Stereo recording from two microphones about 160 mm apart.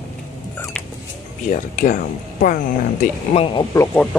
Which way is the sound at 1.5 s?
55° left (ahead or behind).